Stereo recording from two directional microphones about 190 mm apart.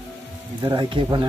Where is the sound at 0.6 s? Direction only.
20° right (ahead or behind).